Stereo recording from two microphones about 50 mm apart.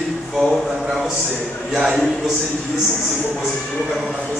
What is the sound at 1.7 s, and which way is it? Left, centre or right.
Speech, centre.